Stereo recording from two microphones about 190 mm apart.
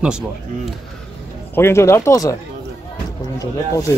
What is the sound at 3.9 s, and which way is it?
Speech, 15° left (ahead or behind).